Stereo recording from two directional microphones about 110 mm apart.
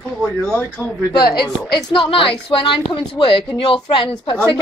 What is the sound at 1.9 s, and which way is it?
A woman's voice, 50° left (ahead or behind).